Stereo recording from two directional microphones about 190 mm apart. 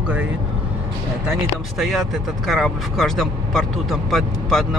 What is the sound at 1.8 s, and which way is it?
Speech, centre (ahead or behind).